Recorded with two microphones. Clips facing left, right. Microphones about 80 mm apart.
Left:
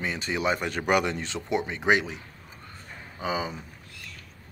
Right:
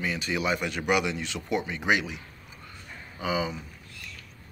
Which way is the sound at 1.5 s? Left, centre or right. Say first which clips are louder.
Left 2 dB; left.